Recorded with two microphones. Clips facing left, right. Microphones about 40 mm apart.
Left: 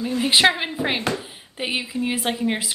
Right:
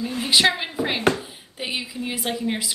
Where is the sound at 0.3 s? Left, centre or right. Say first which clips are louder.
Left 1 dB; centre.